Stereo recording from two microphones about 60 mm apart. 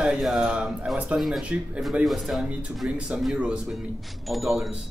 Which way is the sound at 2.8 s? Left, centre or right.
Centre.